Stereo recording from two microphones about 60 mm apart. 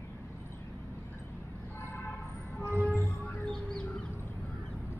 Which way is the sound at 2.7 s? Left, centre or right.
Right.